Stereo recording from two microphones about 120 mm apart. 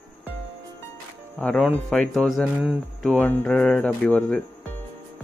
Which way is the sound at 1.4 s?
5° left (ahead or behind).